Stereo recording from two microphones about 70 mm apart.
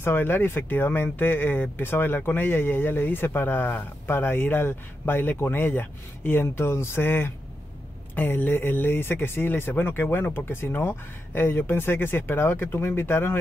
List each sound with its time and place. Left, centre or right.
0.0 s speech: left